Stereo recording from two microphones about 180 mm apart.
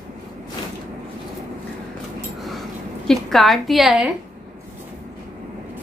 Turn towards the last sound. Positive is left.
turn(degrees=0)  # may be behind; listen again after turning